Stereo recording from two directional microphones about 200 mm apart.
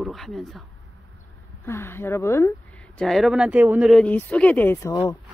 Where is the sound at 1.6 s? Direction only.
10° left (ahead or behind).